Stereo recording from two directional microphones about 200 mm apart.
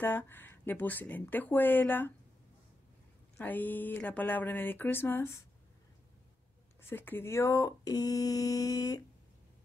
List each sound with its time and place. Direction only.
0.0 s speech: 10° left (ahead or behind)
3.3 s speech: 10° left (ahead or behind)
6.8 s speech: 10° left (ahead or behind)